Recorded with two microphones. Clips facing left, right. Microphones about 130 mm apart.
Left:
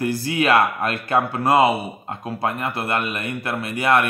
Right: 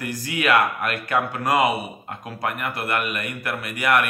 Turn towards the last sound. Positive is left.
turn(degrees=30)  # may be behind; listen again after turning